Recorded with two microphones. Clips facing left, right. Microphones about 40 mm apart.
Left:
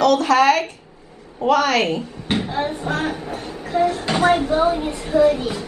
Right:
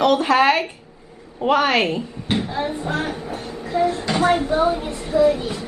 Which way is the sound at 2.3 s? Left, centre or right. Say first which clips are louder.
Left 1 dB; centre.